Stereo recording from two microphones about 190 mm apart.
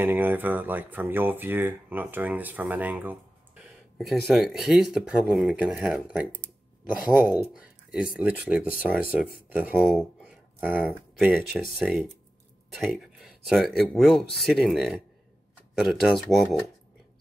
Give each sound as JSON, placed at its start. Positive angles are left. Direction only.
{"t": 0.0, "sound": "speech", "side_deg": -10}